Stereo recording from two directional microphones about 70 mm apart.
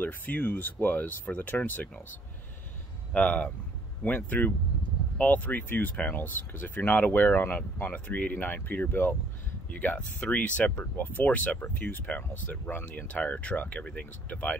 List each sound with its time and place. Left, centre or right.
0.0 s speech: left
3.1 s speech: centre